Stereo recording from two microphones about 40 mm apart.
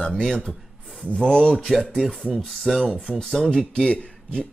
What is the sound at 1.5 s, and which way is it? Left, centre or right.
Speech, centre.